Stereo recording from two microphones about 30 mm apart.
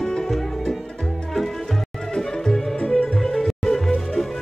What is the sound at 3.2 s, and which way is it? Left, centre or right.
Music, centre.